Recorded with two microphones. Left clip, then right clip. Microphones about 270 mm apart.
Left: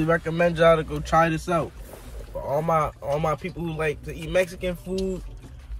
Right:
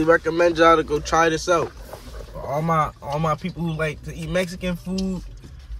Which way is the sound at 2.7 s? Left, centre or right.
Centre.